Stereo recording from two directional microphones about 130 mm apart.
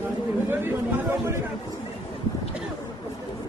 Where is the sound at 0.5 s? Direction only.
20° right (ahead or behind).